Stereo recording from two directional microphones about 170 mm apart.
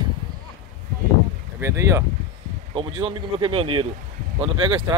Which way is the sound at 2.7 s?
30° right (ahead or behind).